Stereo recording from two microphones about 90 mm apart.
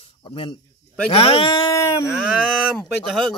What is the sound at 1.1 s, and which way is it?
Speech, 90° left.